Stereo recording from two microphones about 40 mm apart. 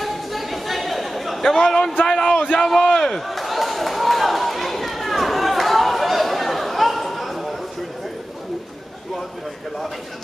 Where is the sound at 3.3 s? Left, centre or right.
Centre.